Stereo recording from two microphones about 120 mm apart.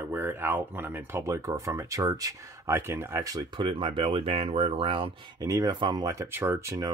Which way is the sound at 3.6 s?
45° right (ahead or behind).